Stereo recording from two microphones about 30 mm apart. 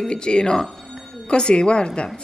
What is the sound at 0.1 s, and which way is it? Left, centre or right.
A woman's voice, left.